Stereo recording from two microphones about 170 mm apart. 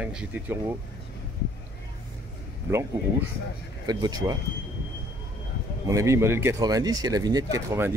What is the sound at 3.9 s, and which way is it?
Speech, 20° right (ahead or behind).